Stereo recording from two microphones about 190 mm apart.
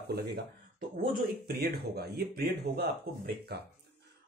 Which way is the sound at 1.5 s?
55° right (ahead or behind).